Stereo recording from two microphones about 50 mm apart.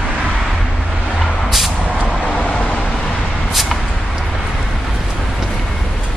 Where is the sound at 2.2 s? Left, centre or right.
Left.